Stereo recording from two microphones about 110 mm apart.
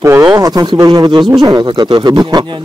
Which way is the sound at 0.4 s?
35° right (ahead or behind).